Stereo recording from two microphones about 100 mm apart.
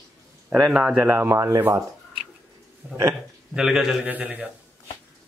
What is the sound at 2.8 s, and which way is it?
Speech, 20° right (ahead or behind).